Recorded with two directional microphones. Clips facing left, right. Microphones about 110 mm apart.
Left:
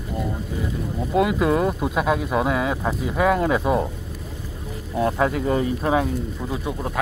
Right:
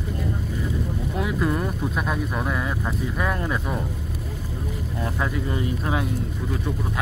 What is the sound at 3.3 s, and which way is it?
Speech, 20° left (ahead or behind).